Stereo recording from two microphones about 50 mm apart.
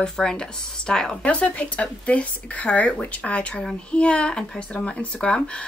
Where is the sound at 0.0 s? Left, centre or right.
Centre.